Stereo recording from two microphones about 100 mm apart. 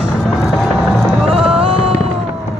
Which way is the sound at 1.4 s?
70° right (ahead or behind).